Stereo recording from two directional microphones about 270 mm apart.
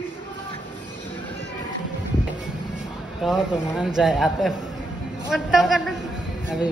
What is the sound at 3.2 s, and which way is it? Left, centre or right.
Speech, centre.